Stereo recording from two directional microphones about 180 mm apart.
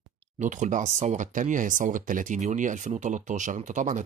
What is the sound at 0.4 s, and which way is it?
Speech, 45° right (ahead or behind).